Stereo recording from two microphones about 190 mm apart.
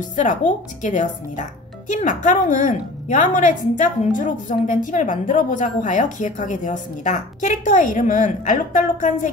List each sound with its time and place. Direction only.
0.1 s speech: 40° left (ahead or behind)